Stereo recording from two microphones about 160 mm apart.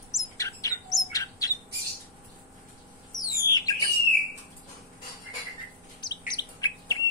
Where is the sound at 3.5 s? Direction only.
25° left (ahead or behind).